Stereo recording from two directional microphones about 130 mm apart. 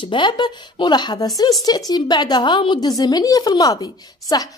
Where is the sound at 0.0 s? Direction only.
40° left (ahead or behind).